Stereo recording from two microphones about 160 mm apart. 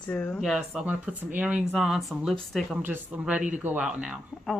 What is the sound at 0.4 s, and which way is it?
A woman's voice, 5° right (ahead or behind).